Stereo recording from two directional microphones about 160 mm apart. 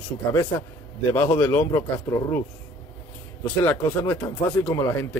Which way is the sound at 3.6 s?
15° left (ahead or behind).